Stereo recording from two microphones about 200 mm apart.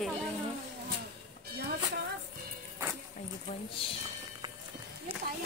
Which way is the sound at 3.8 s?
25° left (ahead or behind).